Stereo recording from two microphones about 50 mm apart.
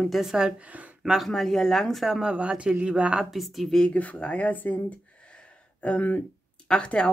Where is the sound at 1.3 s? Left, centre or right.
Centre.